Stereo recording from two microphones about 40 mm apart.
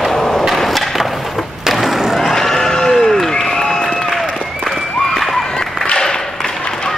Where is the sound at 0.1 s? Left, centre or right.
Centre.